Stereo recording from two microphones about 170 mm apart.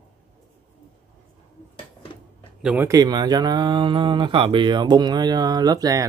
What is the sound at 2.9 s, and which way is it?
Speech, 25° right (ahead or behind).